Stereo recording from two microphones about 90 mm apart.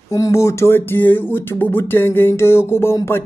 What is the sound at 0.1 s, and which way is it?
Speech, 35° left (ahead or behind).